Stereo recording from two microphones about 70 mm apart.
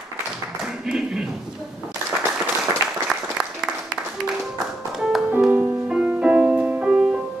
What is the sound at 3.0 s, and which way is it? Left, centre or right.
Applause, centre.